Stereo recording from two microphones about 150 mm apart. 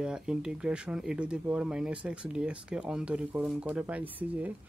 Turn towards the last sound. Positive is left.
turn(degrees=-10)  # may be behind; listen again after turning